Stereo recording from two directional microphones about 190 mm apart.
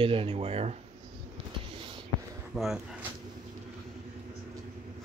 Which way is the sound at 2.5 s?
Centre (ahead or behind).